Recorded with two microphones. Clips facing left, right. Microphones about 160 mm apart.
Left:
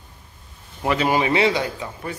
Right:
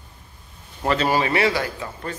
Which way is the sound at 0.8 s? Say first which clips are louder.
Left 1 dB; 15° left (ahead or behind).